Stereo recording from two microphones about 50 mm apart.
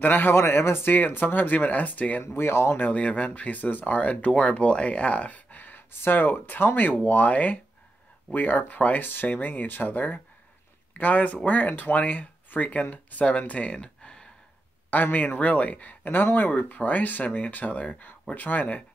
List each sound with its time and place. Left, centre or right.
0.0 s speech: left
0.9 s speech: left
2.2 s speech: left
2.8 s speech: left
14.9 s speech: left